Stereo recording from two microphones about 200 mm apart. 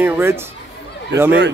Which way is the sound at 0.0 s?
10° right (ahead or behind).